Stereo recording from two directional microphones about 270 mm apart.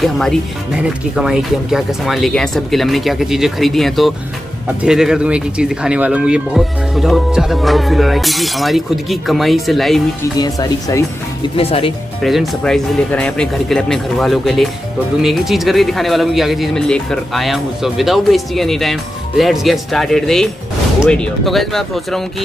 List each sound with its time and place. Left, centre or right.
0.0 s speech: centre
10.4 s speech: centre
12.2 s speech: centre